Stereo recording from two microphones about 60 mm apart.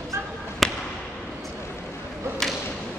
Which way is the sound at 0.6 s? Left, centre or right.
Centre.